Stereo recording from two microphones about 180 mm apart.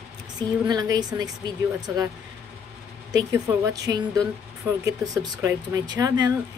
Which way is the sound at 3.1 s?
15° right (ahead or behind).